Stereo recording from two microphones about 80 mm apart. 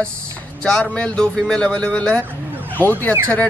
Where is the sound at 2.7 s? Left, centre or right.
Left.